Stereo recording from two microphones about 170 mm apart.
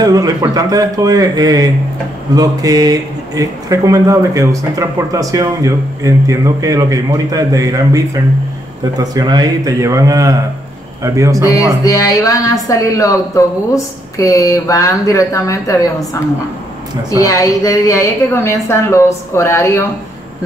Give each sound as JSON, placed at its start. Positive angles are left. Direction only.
{"t": 0.0, "sound": "a man's voice", "side_deg": -20}
{"t": 11.8, "sound": "a woman's voice", "side_deg": 20}